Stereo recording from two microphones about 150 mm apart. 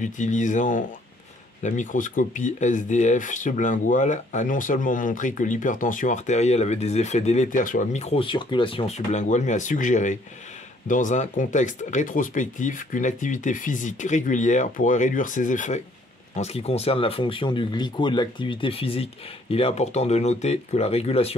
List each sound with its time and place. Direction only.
0.0 s speech: 55° left (ahead or behind)
7.4 s speech: 65° left (ahead or behind)
16.3 s speech: 45° left (ahead or behind)